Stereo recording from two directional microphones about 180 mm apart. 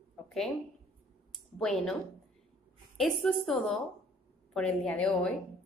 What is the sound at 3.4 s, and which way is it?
A woman's voice, centre (ahead or behind).